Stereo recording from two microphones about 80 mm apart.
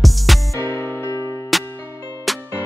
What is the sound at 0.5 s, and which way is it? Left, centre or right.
Music, left.